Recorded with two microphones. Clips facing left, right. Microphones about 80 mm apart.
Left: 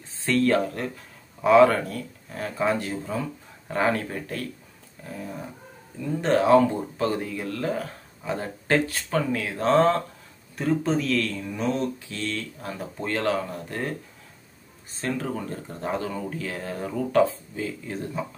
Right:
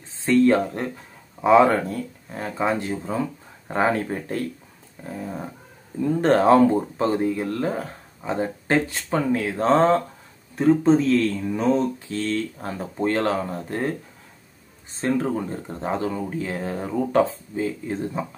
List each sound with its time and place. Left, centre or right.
0.2 s speech: right
6.2 s speech: right
7.0 s speech: right